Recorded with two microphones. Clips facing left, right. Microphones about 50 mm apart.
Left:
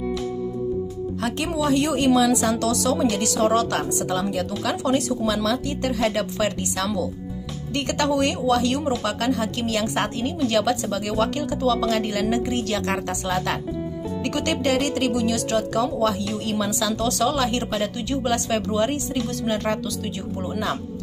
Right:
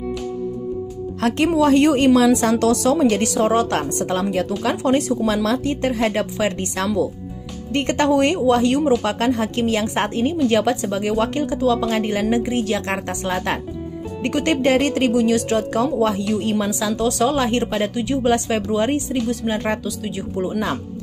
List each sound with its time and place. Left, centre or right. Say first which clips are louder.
1.2 s speech: right 8 dB; right
3.7 s speech: right 3 dB; right
7.7 s a woman's voice: right 5 dB; right
9.0 s a woman's voice: right 3 dB; right; by 20.6 s centre